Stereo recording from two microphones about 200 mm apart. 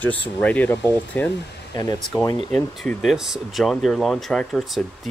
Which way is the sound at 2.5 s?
5° left (ahead or behind).